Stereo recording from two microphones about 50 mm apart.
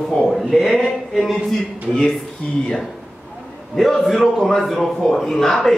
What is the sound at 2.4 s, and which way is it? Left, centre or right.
Speech, centre.